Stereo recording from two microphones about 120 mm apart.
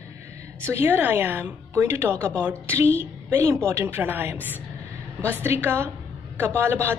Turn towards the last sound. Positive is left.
turn(degrees=-20)  # may be behind; listen again after turning